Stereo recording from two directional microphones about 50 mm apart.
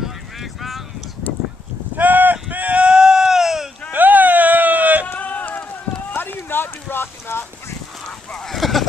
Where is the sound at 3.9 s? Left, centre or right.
Right.